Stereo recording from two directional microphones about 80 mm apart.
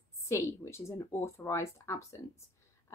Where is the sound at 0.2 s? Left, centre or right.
Left.